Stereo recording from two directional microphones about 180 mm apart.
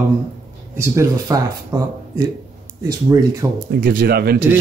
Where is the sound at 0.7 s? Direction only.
15° right (ahead or behind).